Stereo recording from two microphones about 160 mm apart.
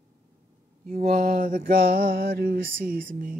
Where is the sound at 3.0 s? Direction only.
60° right (ahead or behind).